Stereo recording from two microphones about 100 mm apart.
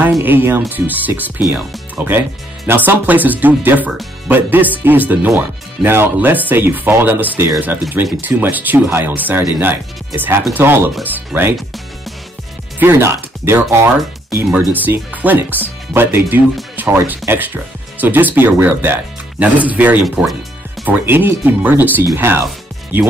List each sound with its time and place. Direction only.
0.2 s speech: 20° right (ahead or behind)
12.7 s speech: 20° right (ahead or behind)
14.3 s speech: 5° right (ahead or behind)
14.7 s speech: 20° right (ahead or behind)
20.8 s speech: 20° right (ahead or behind)